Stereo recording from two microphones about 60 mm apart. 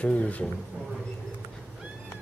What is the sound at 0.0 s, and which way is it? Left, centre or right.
Speech, left.